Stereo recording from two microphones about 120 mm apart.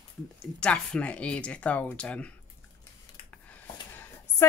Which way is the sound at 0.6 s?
10° left (ahead or behind).